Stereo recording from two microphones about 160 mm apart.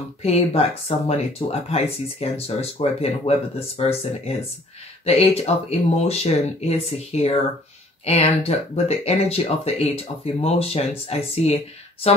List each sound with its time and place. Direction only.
0.2 s speech: 40° left (ahead or behind)
5.0 s speech: 40° left (ahead or behind)